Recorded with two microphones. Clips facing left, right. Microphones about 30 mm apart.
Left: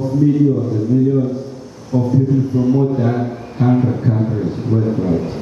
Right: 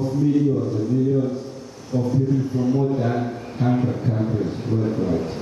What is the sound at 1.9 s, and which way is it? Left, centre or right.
A man's voice, centre.